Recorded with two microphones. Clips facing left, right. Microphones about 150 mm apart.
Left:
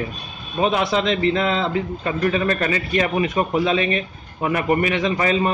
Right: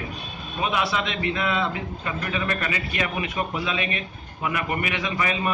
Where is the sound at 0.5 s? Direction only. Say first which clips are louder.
Left 6 dB; 30° left (ahead or behind).